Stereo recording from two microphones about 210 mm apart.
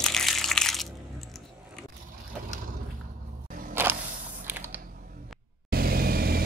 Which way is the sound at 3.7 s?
10° right (ahead or behind).